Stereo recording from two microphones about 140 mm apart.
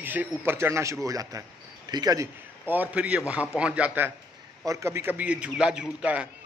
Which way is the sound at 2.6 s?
10° right (ahead or behind).